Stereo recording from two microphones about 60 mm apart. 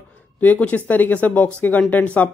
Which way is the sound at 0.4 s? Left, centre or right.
Left.